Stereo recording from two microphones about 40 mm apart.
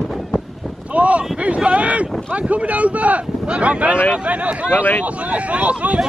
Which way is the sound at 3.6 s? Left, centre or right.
Right.